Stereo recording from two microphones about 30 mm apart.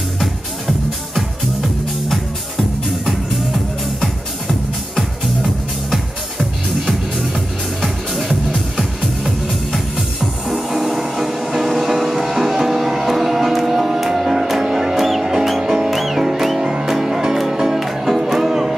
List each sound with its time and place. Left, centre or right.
0.2 s music: centre
9.5 s music: centre
10.5 s music: centre